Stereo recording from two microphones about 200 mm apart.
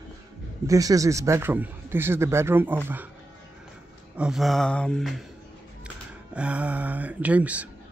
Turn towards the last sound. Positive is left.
turn(degrees=-5)  # may be behind; listen again after turning